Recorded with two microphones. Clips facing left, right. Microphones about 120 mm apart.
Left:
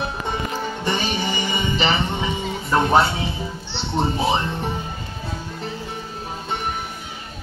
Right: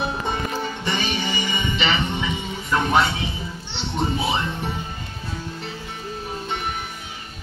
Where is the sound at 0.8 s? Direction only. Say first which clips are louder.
Left 4 dB; 40° left (ahead or behind).